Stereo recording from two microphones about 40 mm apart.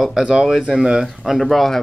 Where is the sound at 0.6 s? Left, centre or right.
Centre.